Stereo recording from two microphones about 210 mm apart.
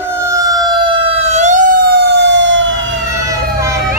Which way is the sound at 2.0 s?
55° right (ahead or behind).